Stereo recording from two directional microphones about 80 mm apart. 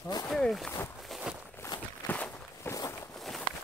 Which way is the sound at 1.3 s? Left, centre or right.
Centre.